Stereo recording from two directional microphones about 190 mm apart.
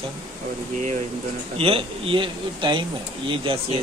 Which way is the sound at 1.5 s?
30° right (ahead or behind).